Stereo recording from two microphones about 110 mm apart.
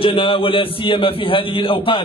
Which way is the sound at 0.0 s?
50° left (ahead or behind).